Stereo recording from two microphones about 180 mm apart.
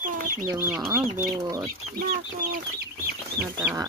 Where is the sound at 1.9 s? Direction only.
55° right (ahead or behind).